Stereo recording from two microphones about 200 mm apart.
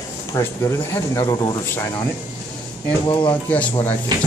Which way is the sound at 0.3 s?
15° left (ahead or behind).